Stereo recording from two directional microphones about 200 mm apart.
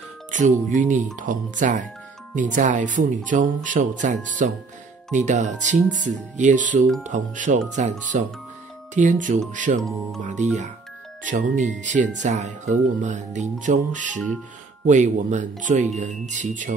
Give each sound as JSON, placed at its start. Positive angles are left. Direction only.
{"t": 0.3, "sound": "speech", "side_deg": -40}
{"t": 9.8, "sound": "speech", "side_deg": 0}
{"t": 10.2, "sound": "speech", "side_deg": -35}